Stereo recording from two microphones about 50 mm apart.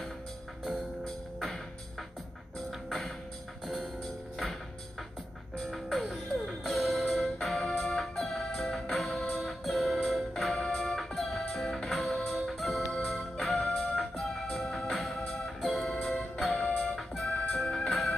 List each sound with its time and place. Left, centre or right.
0.7 s music: centre
3.6 s music: centre
5.6 s music: centre
7.5 s organ: centre
9.3 s music: centre
12.9 s organ: centre
13.5 s music: centre
17.8 s music: centre